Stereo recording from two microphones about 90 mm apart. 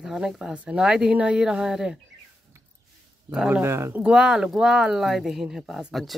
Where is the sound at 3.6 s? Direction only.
30° right (ahead or behind).